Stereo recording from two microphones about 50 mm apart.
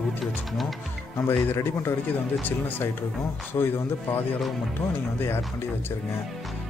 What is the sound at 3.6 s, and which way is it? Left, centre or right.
Speech, left.